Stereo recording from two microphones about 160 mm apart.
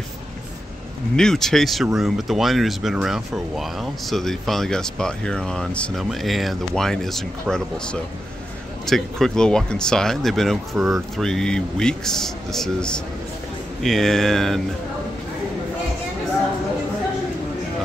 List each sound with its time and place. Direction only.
1.1 s speech: 5° left (ahead or behind)